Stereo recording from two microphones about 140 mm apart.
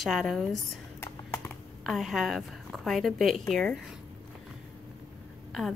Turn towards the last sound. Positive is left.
turn(degrees=0)  # may be behind; listen again after turning